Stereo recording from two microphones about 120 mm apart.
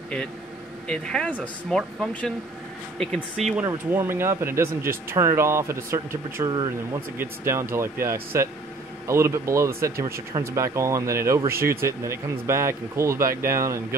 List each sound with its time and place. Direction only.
0.8 s speech: 10° left (ahead or behind)
3.6 s speech: 20° right (ahead or behind)
6.5 s speech: 35° right (ahead or behind)
7.2 s speech: 20° right (ahead or behind)